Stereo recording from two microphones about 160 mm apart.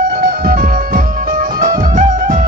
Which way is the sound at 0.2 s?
65° right (ahead or behind).